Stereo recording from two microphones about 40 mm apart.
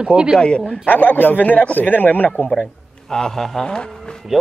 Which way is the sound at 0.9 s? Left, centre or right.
Left.